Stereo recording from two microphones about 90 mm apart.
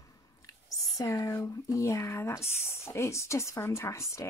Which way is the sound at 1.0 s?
35° left (ahead or behind).